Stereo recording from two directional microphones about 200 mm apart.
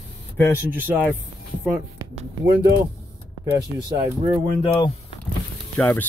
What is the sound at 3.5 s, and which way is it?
Speech, 20° right (ahead or behind).